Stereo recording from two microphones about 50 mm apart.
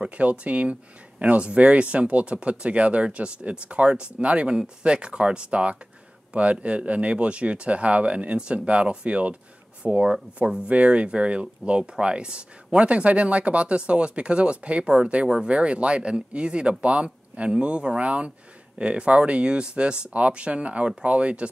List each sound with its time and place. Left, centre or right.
0.0 s speech: right